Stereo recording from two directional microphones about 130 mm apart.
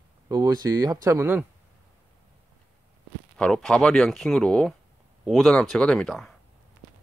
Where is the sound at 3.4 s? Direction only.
5° left (ahead or behind).